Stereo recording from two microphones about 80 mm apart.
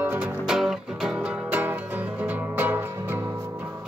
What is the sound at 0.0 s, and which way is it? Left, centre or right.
Music, centre.